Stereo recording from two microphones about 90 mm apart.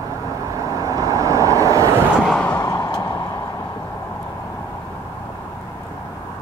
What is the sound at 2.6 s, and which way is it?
Vehicle, 50° left (ahead or behind).